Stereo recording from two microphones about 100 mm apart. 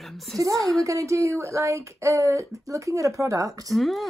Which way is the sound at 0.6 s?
5° left (ahead or behind).